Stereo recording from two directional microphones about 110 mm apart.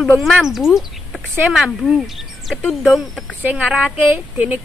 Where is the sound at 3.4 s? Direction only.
15° right (ahead or behind).